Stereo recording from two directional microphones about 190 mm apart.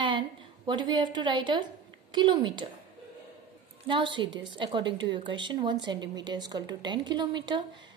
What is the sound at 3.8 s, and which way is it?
Speech, 25° right (ahead or behind).